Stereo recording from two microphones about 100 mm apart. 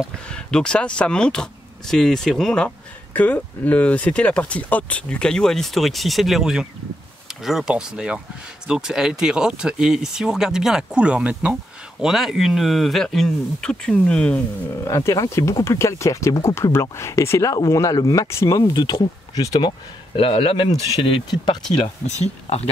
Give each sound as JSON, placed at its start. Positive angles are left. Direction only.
{"t": 0.3, "sound": "speech", "side_deg": 10}
{"t": 14.9, "sound": "speech", "side_deg": 35}
{"t": 18.9, "sound": "speech", "side_deg": 35}
{"t": 20.2, "sound": "speech", "side_deg": 65}
{"t": 22.0, "sound": "speech", "side_deg": 90}